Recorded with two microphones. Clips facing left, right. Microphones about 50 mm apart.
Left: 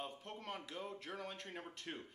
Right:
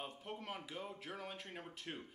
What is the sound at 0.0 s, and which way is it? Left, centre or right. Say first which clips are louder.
Speech: even; centre.